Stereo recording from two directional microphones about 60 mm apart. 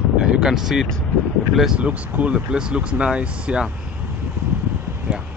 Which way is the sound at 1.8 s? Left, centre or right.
Right.